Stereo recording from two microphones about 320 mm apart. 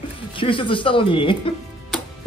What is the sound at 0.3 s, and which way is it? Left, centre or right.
Speech, centre.